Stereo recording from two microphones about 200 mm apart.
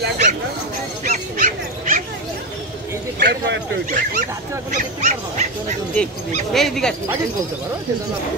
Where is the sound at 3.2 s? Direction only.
60° right (ahead or behind).